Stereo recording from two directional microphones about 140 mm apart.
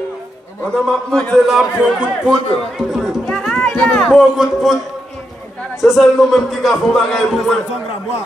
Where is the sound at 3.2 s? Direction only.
5° left (ahead or behind).